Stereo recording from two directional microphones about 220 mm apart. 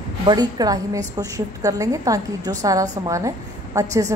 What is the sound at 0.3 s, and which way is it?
A woman's voice, 20° right (ahead or behind).